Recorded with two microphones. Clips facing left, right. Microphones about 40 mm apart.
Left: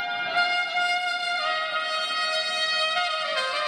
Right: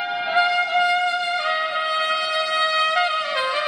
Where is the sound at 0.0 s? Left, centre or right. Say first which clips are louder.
Right 5 dB; centre.